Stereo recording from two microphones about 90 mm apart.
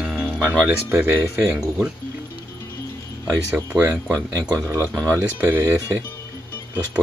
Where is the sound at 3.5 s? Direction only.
20° right (ahead or behind).